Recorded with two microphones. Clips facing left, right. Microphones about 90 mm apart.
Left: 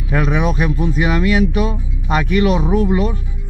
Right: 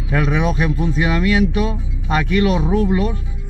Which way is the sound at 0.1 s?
10° left (ahead or behind).